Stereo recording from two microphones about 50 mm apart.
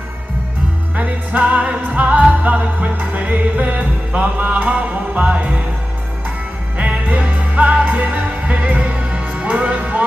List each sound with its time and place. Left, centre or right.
0.9 s music: right
6.8 s music: right